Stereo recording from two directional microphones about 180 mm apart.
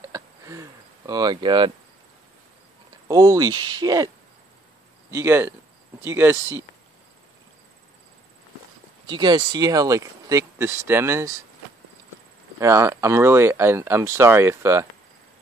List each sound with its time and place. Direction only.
0.1 s a sound: 20° right (ahead or behind)
3.1 s speech: 20° right (ahead or behind)
5.1 s speech: 15° right (ahead or behind)
9.0 s speech: 25° right (ahead or behind)
12.5 s speech: 15° right (ahead or behind)